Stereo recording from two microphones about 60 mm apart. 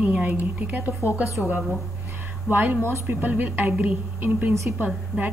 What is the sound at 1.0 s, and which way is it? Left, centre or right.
Speech, left.